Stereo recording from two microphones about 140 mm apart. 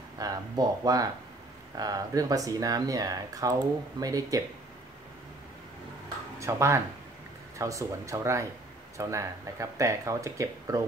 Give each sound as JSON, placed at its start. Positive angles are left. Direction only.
{"t": 0.2, "sound": "speech", "side_deg": -25}
{"t": 6.4, "sound": "speech", "side_deg": -20}